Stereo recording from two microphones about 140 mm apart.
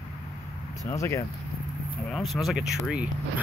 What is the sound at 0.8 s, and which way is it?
Speech, 20° left (ahead or behind).